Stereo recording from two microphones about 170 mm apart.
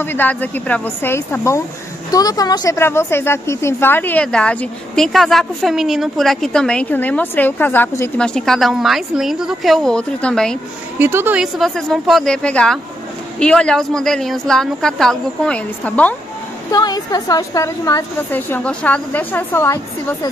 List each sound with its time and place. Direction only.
0.0 s a woman's voice: 10° left (ahead or behind)
11.0 s speech: 15° right (ahead or behind); by 16.2 s 10° left (ahead or behind)
16.7 s a woman's voice: 25° left (ahead or behind)